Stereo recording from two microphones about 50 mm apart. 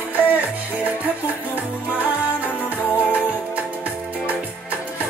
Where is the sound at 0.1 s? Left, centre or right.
Right.